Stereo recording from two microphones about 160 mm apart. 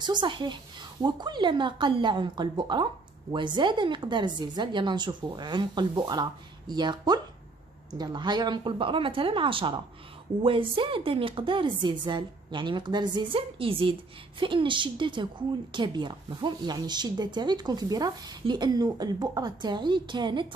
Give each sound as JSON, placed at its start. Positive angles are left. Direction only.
{"t": 0.0, "sound": "a woman's voice", "side_deg": -30}